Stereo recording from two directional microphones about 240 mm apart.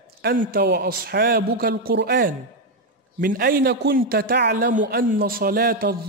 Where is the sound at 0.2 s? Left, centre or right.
Right.